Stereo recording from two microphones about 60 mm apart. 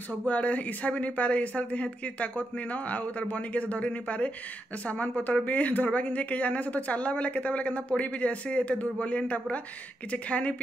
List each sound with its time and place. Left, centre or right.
0.2 s speech: left